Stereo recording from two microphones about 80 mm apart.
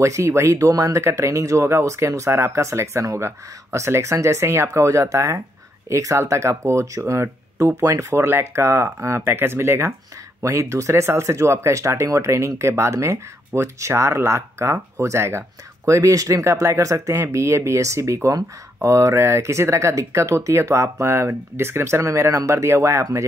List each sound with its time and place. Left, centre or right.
0.0 s speech: right